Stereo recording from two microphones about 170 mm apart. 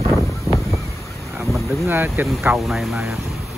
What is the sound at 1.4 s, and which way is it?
Boat, centre (ahead or behind).